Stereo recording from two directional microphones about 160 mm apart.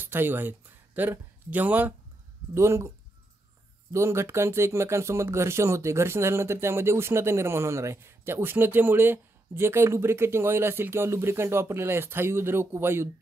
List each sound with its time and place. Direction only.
0.0 s speech: 15° right (ahead or behind)
3.9 s speech: 15° right (ahead or behind)